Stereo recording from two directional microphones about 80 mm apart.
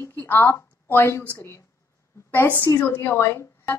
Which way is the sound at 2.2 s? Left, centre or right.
Left.